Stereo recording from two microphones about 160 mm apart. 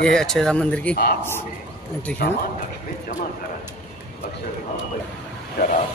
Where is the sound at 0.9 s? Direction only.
70° left (ahead or behind).